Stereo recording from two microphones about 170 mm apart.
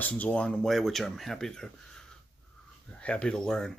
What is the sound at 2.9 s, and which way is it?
Speech, 5° left (ahead or behind).